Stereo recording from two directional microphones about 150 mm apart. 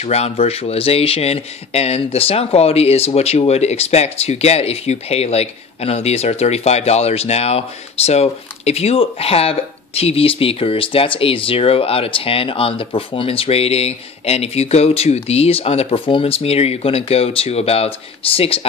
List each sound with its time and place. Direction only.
0.0 s speech: 45° left (ahead or behind)